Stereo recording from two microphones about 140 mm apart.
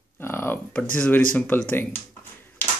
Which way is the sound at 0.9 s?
10° left (ahead or behind).